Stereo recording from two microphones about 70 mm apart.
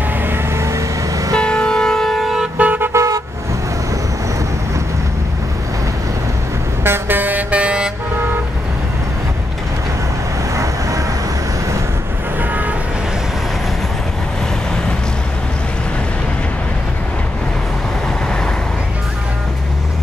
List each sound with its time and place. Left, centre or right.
0.3 s vehicle: right
1.3 s vehicle: centre
2.5 s car: right
2.9 s car: right
6.8 s vehicle: right
10.5 s vehicle: right